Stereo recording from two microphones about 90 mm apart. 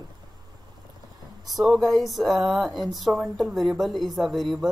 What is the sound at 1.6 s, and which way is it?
A woman's voice, centre (ahead or behind).